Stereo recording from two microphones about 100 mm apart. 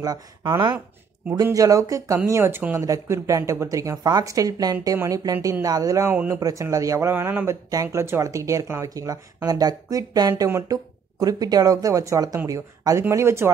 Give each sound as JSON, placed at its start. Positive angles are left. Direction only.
{"t": 0.0, "sound": "a man's voice", "side_deg": -40}
{"t": 7.7, "sound": "a man's voice", "side_deg": -30}